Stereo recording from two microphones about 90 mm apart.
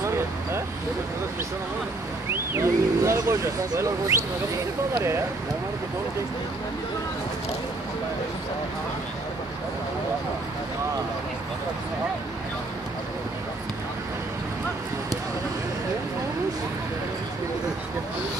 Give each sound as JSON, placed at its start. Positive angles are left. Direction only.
{"t": 2.3, "sound": "speech", "side_deg": -30}